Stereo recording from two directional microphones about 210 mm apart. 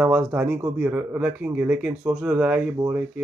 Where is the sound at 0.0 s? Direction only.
5° right (ahead or behind).